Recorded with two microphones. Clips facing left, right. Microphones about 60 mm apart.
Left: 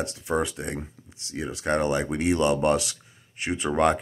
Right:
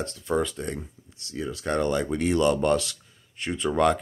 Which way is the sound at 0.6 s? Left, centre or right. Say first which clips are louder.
Right 1 dB; centre.